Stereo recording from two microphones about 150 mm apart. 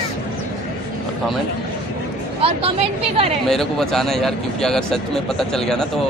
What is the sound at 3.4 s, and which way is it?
Speech, centre (ahead or behind).